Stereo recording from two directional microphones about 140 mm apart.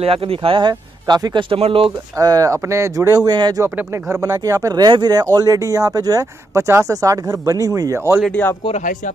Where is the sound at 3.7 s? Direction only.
15° right (ahead or behind).